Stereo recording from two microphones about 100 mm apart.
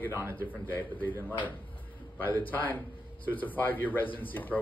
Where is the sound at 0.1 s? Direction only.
25° right (ahead or behind).